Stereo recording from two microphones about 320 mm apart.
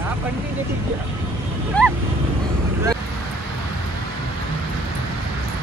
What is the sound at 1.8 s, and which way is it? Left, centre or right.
Vehicle, centre.